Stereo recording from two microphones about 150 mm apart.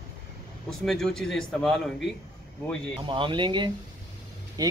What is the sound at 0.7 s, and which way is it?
A man's voice, 5° left (ahead or behind).